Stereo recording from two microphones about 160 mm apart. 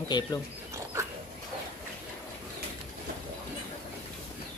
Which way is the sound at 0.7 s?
20° right (ahead or behind).